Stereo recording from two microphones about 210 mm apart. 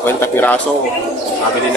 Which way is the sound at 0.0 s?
10° left (ahead or behind).